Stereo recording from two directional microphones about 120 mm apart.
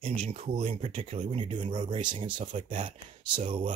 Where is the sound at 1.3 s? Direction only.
40° right (ahead or behind).